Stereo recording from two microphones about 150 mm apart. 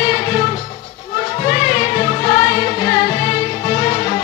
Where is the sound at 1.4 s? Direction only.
45° left (ahead or behind).